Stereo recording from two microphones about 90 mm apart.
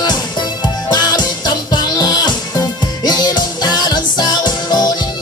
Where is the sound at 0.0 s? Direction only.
55° left (ahead or behind).